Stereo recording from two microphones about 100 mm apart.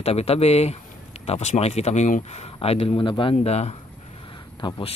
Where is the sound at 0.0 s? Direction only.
90° left.